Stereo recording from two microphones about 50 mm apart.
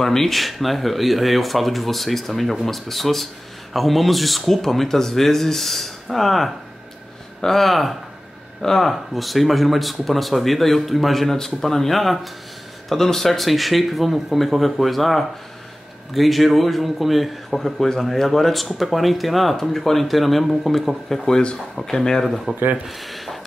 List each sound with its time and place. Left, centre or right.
0.0 s a man's voice: centre
21.3 s speech: centre
22.8 s a sound: centre